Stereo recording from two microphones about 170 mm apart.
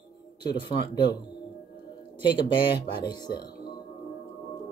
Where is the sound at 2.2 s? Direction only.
30° left (ahead or behind).